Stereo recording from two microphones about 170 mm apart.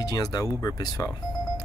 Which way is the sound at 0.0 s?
25° left (ahead or behind).